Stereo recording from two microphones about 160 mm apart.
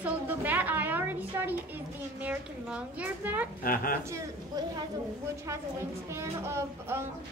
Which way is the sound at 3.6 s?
65° left (ahead or behind).